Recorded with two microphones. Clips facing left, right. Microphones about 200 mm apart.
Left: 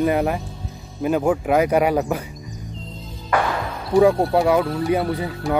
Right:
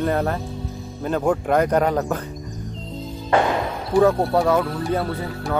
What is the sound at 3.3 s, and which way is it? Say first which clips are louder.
Speech: right 3 dB; 25° right (ahead or behind).